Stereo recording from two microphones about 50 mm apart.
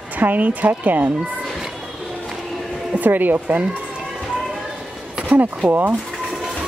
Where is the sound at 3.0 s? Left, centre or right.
Right.